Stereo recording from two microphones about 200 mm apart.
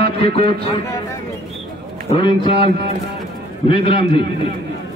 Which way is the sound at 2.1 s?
25° left (ahead or behind).